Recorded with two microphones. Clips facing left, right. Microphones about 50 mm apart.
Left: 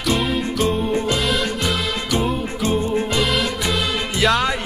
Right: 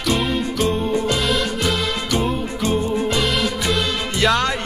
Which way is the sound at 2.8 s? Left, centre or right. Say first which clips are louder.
Even; left.